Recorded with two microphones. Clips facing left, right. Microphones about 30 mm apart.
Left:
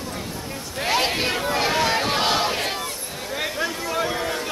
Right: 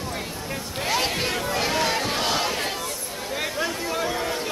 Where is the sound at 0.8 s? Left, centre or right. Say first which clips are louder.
Left 3 dB; centre.